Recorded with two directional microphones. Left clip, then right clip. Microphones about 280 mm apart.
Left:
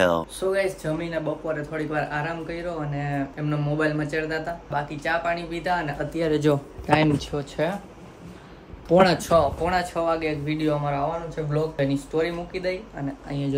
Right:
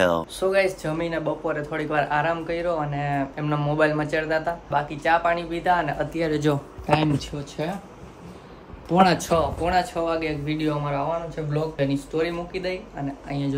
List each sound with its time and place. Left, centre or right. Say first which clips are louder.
0.0 s speech: even; centre
9.0 s speech: right 2 dB; centre